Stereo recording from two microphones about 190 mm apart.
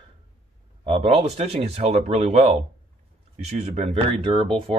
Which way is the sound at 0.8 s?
30° right (ahead or behind).